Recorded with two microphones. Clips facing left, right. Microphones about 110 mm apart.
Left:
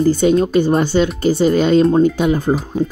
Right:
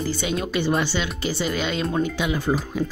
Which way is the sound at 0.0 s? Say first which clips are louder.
Left 13 dB; 45° left (ahead or behind).